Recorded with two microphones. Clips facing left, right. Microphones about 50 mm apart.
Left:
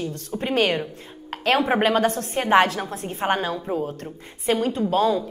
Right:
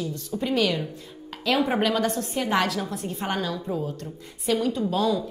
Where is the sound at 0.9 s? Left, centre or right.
Left.